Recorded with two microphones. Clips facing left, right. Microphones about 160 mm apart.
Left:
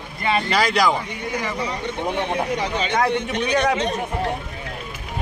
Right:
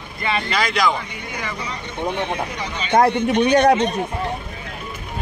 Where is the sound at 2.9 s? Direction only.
35° right (ahead or behind).